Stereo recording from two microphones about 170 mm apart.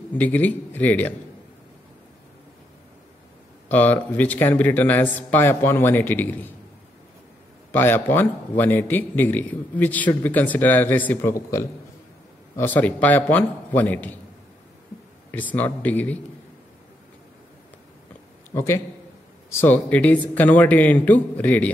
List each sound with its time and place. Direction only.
0.1 s a man's voice: 10° left (ahead or behind)
3.6 s a man's voice: 10° left (ahead or behind)
7.7 s a man's voice: 10° left (ahead or behind)
15.3 s a man's voice: 10° left (ahead or behind)
18.5 s a man's voice: 15° left (ahead or behind)